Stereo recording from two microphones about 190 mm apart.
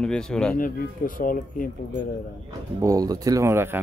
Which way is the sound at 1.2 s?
45° left (ahead or behind).